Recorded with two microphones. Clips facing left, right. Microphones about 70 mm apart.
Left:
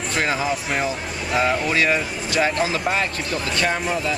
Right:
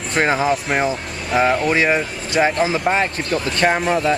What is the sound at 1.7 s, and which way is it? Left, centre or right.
Speech, right.